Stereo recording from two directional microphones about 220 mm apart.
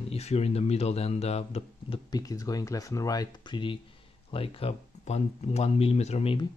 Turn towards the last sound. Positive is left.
turn(degrees=25)  # may be behind; listen again after turning